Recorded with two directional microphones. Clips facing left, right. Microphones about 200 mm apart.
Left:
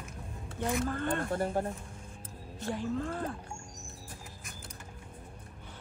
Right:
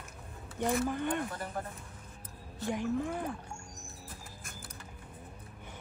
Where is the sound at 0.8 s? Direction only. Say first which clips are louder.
Even; 15° right (ahead or behind).